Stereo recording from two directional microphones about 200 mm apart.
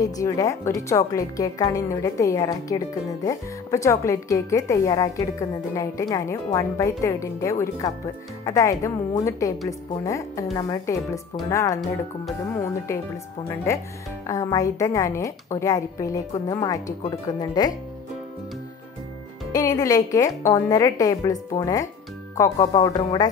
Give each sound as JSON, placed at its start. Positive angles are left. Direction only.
{"t": 0.0, "sound": "a woman's voice", "side_deg": 15}
{"t": 19.5, "sound": "a woman's voice", "side_deg": 15}